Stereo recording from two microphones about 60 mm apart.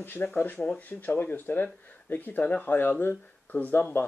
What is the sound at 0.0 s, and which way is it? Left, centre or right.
Speech, left.